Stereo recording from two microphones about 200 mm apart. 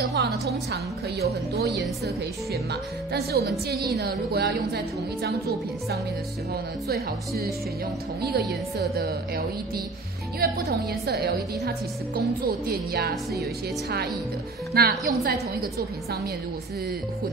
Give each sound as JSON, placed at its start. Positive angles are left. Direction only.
{"t": 0.1, "sound": "music", "side_deg": -55}
{"t": 1.5, "sound": "speech", "side_deg": -55}
{"t": 6.5, "sound": "speech", "side_deg": -50}
{"t": 10.4, "sound": "speech", "side_deg": -50}